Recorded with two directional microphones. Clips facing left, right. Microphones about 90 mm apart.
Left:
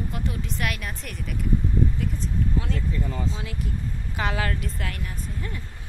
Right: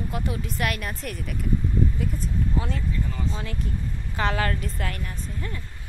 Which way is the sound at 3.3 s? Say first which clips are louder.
Right 1 dB; 5° left (ahead or behind).